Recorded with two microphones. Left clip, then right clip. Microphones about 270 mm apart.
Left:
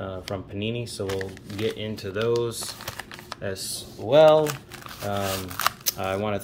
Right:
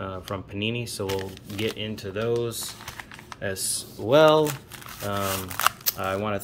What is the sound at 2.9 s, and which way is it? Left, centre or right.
Typing, left.